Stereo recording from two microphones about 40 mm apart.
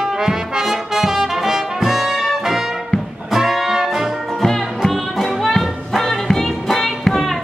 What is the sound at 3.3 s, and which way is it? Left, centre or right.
Music, centre.